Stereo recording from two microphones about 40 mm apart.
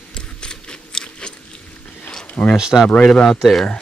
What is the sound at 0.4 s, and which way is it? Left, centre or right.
Biting, left.